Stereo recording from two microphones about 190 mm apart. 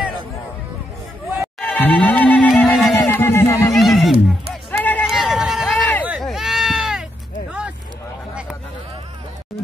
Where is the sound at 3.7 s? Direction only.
Centre (ahead or behind).